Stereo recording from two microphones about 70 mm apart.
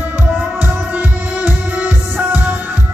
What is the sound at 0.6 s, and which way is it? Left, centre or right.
Music, centre.